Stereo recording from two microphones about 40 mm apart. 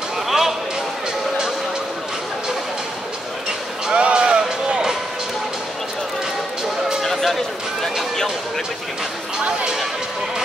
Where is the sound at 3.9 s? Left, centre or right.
Right.